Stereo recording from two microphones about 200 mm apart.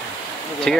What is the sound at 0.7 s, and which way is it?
Speech, 5° left (ahead or behind).